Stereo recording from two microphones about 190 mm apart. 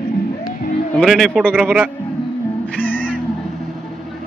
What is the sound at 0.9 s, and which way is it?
A man's voice, centre (ahead or behind).